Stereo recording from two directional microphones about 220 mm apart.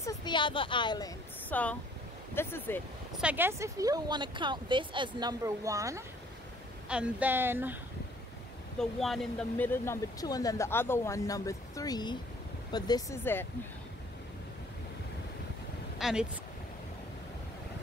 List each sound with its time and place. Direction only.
0.0 s a woman's voice: 15° left (ahead or behind)
1.5 s speech: 5° left (ahead or behind)
3.2 s speech: 5° right (ahead or behind)
8.7 s speech: centre (ahead or behind)
16.0 s speech: 5° right (ahead or behind)